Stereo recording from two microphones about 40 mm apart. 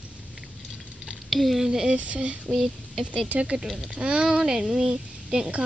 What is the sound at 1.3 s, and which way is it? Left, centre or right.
Speech, centre.